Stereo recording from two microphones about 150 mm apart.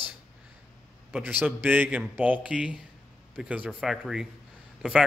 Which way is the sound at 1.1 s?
10° right (ahead or behind).